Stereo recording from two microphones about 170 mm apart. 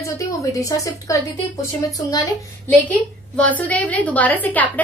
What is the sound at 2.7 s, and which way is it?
A woman's voice, 10° left (ahead or behind).